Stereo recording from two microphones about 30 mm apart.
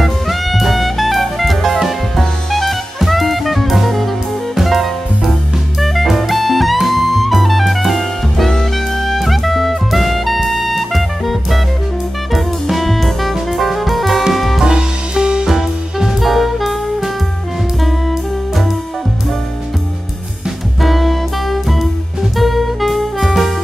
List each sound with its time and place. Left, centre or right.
0.0 s music: centre
2.1 s jazz: centre
4.6 s music: centre
14.6 s music: right
15.4 s music: centre
16.2 s jazz: centre
20.8 s music: centre
22.4 s saxophone: centre